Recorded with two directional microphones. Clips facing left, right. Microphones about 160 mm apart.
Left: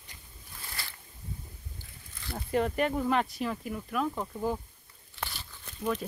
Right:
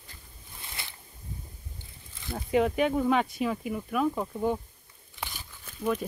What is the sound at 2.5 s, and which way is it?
Speech, 5° right (ahead or behind).